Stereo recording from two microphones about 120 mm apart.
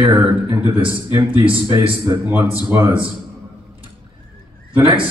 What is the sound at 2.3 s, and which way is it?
Speech, 10° right (ahead or behind).